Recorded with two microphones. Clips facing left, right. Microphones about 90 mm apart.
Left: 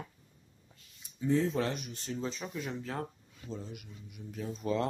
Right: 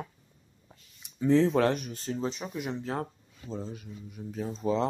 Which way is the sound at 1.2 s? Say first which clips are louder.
Right 7 dB; 85° right.